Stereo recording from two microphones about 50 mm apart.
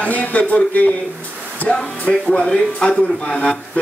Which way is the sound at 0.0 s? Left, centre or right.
Left.